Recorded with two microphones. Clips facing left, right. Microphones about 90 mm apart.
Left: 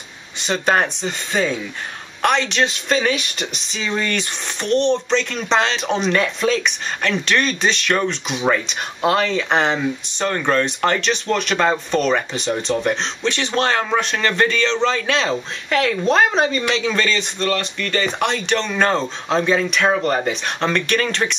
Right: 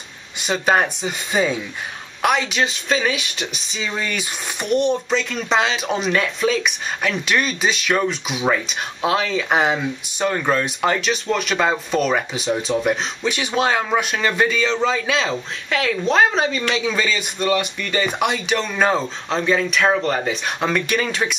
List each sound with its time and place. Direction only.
0.4 s speech: 5° right (ahead or behind)